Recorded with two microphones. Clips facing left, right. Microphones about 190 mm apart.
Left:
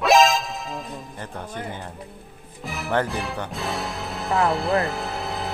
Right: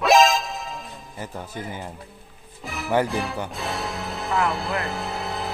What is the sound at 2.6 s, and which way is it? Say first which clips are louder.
Music: right 2 dB; centre (ahead or behind).